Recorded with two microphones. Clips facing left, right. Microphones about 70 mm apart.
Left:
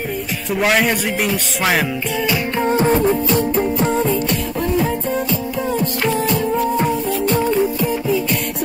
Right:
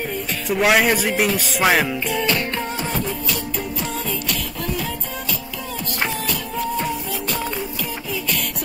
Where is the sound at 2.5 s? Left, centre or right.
Left.